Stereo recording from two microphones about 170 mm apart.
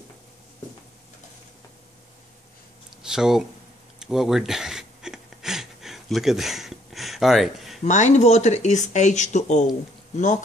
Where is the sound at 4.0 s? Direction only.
Centre (ahead or behind).